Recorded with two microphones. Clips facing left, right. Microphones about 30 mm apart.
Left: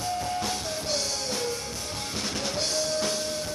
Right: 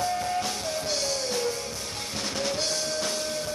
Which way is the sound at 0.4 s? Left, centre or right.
Centre.